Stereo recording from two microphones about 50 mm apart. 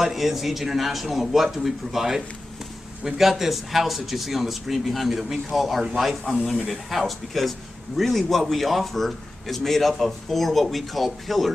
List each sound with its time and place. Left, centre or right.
0.0 s a man's voice: centre